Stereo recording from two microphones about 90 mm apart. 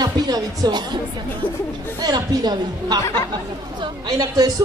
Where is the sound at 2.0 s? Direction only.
50° right (ahead or behind).